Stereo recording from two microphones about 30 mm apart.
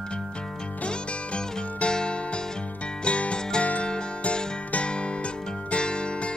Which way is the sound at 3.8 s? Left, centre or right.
Left.